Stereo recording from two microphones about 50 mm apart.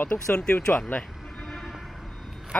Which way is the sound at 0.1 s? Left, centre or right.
Left.